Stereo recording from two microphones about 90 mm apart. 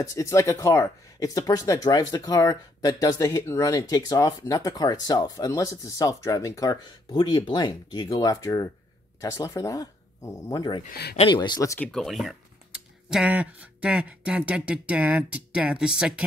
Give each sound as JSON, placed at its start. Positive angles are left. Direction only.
{"t": 0.0, "sound": "speech", "side_deg": 35}
{"t": 8.1, "sound": "speech", "side_deg": 40}
{"t": 11.9, "sound": "speech", "side_deg": 5}
{"t": 12.7, "sound": "speech", "side_deg": -10}